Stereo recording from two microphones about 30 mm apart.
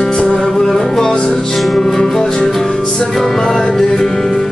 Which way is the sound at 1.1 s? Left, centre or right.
Left.